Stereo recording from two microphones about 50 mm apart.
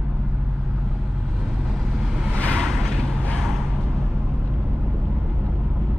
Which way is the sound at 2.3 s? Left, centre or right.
Left.